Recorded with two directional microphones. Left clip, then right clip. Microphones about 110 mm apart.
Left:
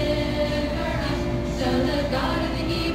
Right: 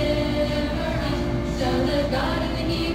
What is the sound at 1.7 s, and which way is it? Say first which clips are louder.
Music: right 1 dB; 25° left (ahead or behind).